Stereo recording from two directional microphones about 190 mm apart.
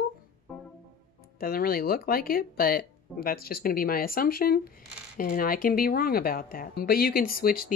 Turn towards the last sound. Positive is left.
turn(degrees=50)  # may be behind; listen again after turning